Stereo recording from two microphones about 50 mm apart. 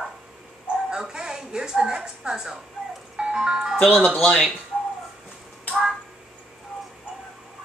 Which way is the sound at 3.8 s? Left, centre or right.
Centre.